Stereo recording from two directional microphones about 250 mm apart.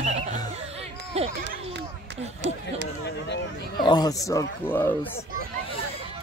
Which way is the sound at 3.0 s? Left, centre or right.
Left.